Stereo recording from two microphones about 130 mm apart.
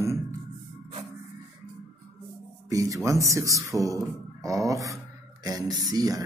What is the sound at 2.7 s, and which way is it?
A man's voice, 25° right (ahead or behind).